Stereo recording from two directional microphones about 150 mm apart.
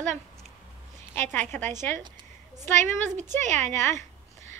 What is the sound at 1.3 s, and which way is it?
Speech, 10° left (ahead or behind).